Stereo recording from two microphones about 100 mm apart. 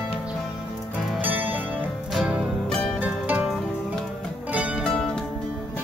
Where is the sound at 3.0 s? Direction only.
15° right (ahead or behind).